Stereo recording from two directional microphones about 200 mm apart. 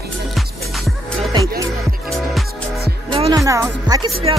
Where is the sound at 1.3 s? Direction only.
15° right (ahead or behind).